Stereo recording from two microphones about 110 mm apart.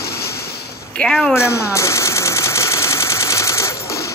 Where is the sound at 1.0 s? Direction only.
5° left (ahead or behind).